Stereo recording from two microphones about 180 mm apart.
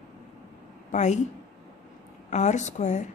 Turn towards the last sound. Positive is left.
turn(degrees=40)  # may be behind; listen again after turning